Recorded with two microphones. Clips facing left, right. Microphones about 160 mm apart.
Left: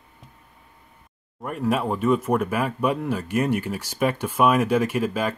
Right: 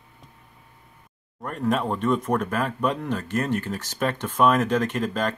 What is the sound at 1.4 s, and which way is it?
Speech, 5° left (ahead or behind).